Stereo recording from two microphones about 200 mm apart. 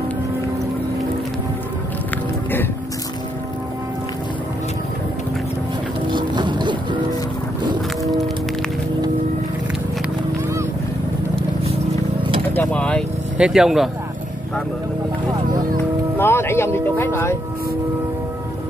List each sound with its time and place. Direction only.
6.1 s music: 25° right (ahead or behind)
12.5 s vehicle: 5° left (ahead or behind)
16.2 s music: 10° left (ahead or behind)